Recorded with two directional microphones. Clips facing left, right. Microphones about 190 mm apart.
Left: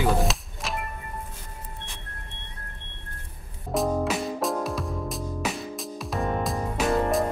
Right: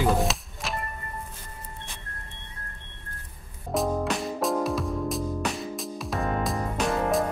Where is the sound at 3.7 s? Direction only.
Centre (ahead or behind).